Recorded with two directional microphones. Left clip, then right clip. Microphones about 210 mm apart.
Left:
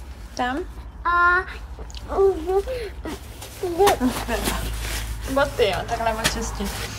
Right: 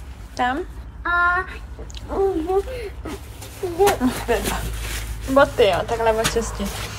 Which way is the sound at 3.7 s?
5° left (ahead or behind).